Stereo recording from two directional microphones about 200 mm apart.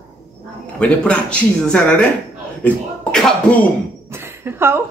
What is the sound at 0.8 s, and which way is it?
A man's voice, 5° left (ahead or behind).